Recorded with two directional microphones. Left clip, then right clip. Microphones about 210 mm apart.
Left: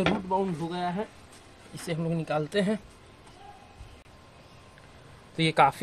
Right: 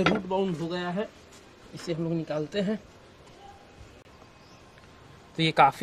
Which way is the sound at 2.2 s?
50° left (ahead or behind).